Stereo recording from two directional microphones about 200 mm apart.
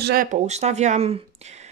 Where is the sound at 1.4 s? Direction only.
35° right (ahead or behind).